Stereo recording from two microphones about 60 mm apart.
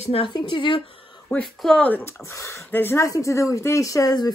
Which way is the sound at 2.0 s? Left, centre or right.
Left.